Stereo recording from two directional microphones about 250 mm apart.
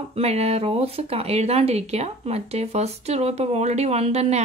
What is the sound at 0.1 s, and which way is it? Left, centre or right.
Speech, right.